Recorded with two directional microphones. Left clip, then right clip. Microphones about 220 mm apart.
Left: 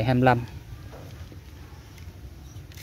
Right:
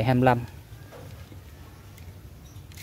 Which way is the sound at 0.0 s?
5° right (ahead or behind).